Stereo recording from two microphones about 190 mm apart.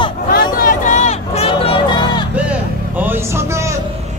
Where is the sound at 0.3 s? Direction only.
45° left (ahead or behind); by 2.2 s 25° left (ahead or behind).